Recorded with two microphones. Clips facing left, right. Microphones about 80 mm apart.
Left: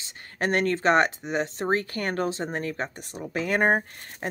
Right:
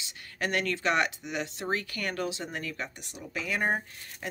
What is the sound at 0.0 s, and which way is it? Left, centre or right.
Speech, left.